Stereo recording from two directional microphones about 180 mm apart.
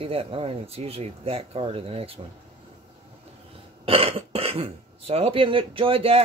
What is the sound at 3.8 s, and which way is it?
Speech, 30° right (ahead or behind).